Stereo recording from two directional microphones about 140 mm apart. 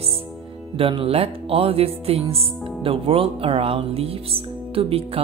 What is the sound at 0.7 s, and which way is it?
Speech, 40° right (ahead or behind).